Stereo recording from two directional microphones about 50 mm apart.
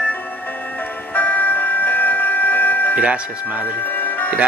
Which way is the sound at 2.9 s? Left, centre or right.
Right.